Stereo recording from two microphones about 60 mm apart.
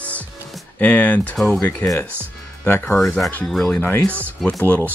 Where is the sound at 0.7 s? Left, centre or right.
Left.